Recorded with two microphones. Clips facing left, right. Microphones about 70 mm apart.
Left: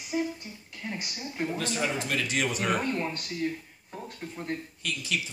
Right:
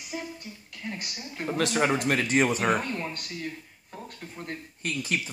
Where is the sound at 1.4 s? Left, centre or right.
Right.